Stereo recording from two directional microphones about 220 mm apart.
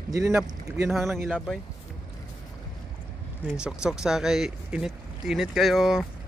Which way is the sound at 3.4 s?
5° right (ahead or behind).